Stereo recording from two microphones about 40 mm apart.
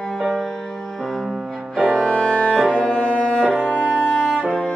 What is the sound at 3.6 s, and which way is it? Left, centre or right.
Music, left.